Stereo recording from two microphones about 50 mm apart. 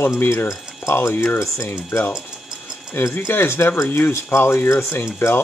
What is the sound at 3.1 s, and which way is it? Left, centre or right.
Speech, left.